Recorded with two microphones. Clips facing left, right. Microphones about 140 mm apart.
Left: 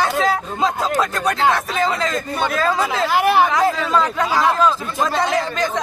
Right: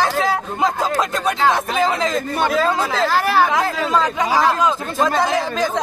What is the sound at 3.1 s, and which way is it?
Speech, 15° left (ahead or behind).